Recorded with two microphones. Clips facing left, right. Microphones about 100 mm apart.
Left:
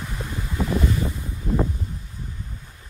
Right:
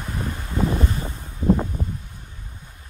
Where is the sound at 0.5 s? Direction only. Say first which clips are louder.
Even; 30° right (ahead or behind).